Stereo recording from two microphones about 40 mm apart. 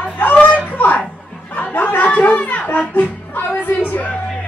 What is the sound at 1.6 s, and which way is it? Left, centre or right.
Music, left.